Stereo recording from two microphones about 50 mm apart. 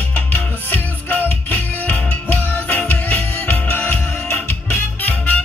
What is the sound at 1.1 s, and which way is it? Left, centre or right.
Music, left.